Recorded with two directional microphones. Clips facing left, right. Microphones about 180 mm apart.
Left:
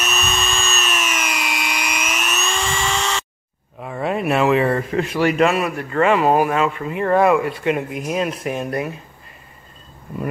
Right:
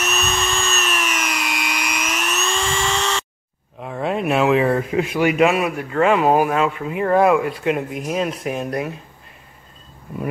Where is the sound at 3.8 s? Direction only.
Centre (ahead or behind).